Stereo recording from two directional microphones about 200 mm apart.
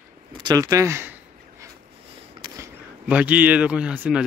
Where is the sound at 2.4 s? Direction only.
20° right (ahead or behind).